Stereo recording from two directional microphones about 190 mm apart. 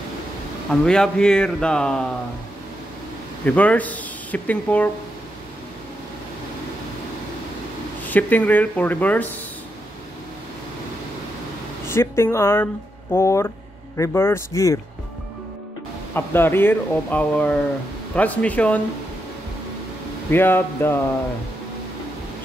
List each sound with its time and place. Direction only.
0.7 s a man's voice: 5° left (ahead or behind)
3.4 s speech: 10° left (ahead or behind)
8.0 s speech: 10° left (ahead or behind)
11.9 s speech: 15° left (ahead or behind)
16.2 s speech: 10° left (ahead or behind)
20.2 s speech: 10° left (ahead or behind)